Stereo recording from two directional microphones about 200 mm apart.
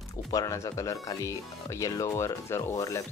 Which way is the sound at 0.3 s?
15° left (ahead or behind).